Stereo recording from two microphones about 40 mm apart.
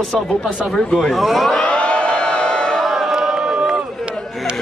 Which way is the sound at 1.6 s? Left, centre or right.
Left.